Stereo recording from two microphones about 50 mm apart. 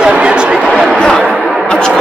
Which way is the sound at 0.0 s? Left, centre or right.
Centre.